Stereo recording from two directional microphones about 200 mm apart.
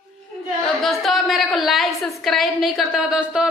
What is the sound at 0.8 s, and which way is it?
A woman's voice, centre (ahead or behind).